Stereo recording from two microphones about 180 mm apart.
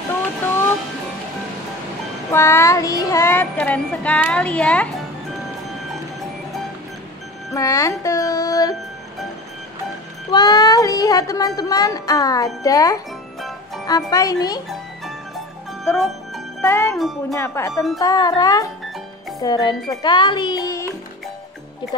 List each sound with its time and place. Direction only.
2.3 s child singing: 15° left (ahead or behind)
7.5 s music: 20° left (ahead or behind)
10.3 s speech: 20° left (ahead or behind)
15.8 s speech: 5° left (ahead or behind)
16.6 s child singing: 15° left (ahead or behind)
17.9 s speech: 20° left (ahead or behind)